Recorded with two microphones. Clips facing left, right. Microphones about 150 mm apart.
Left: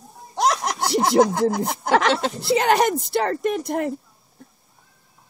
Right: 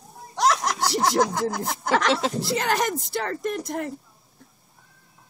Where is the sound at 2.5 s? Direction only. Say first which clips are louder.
Left 10 dB; 70° left (ahead or behind).